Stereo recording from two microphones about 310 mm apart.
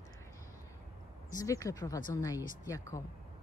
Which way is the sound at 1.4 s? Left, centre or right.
Centre.